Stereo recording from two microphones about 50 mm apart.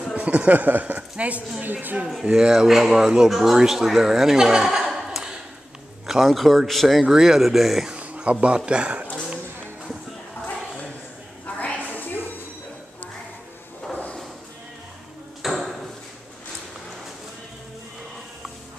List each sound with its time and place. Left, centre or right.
0.1 s speech: right
2.3 s speech: centre
4.6 s chuckle: centre
6.0 s speech: centre
7.9 s a sound: right
8.5 s speech: centre
11.4 s a sound: left
15.4 s ping: centre